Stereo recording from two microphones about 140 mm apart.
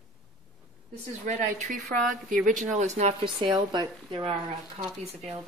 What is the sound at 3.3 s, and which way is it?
Speech, 35° right (ahead or behind).